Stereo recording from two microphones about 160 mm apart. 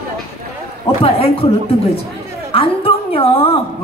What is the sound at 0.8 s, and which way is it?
Speech, 35° left (ahead or behind).